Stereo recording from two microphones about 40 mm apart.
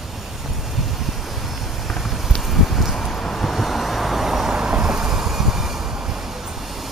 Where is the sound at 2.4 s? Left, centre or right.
Centre.